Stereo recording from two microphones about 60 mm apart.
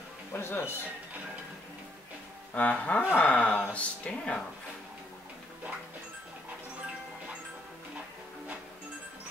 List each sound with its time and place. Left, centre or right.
0.3 s speech: left
2.5 s speech: left